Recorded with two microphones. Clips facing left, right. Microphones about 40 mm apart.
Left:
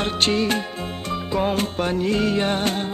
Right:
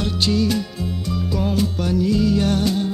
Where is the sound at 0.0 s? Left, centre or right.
Left.